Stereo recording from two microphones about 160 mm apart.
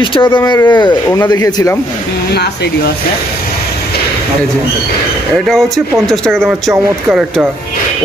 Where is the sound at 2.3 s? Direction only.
90° left.